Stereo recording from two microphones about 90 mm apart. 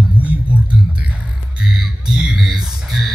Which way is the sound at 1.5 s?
5° right (ahead or behind).